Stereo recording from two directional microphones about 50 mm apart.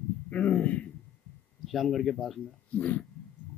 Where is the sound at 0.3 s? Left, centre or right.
Left.